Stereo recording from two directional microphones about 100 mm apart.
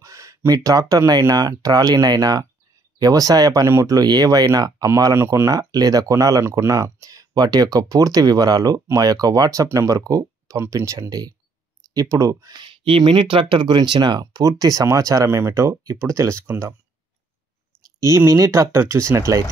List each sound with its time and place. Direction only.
0.0 s speech: 35° right (ahead or behind)
5.5 s speech: 40° right (ahead or behind)
12.5 s speech: 60° right (ahead or behind)
14.2 s speech: 35° right (ahead or behind)
18.0 s speech: 30° right (ahead or behind)